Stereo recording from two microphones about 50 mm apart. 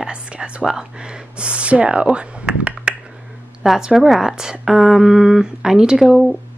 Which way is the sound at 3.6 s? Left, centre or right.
Centre.